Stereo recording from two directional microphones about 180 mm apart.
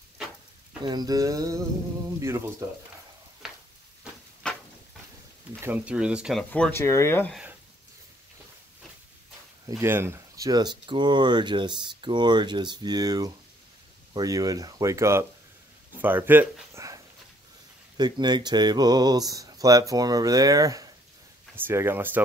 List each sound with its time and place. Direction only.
0.8 s speech: 20° right (ahead or behind)
5.6 s speech: 10° right (ahead or behind)
6.5 s speech: 10° left (ahead or behind)
9.7 s speech: 15° right (ahead or behind)